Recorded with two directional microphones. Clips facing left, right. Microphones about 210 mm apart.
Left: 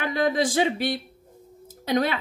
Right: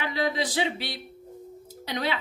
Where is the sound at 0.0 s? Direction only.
50° left (ahead or behind).